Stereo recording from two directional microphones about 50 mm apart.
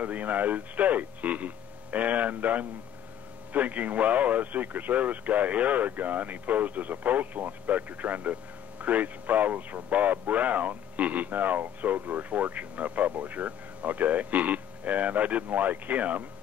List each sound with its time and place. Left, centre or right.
0.0 s speech: right